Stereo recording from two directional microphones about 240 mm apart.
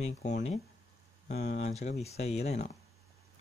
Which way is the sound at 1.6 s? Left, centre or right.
Left.